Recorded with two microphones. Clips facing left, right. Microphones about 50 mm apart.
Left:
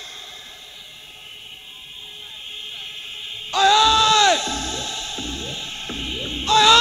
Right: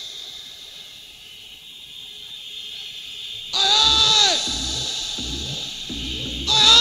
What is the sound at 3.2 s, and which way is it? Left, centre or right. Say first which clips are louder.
Music: left 7 dB; left.